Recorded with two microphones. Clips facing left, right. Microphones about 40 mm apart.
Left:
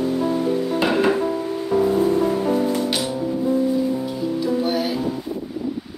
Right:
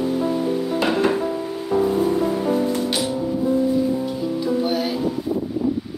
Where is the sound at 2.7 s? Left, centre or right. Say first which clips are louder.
Even; centre.